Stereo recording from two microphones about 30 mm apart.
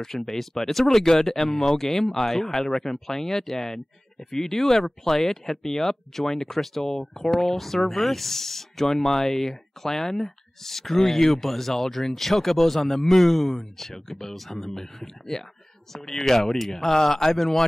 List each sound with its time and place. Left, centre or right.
0.0 s speech: centre